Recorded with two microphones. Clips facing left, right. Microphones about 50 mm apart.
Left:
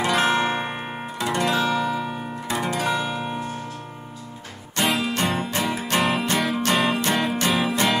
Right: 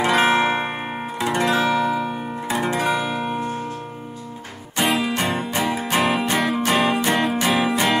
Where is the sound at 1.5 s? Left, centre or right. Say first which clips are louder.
Right 3 dB; centre.